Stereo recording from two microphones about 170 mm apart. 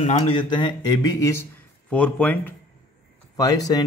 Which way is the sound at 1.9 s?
5° left (ahead or behind).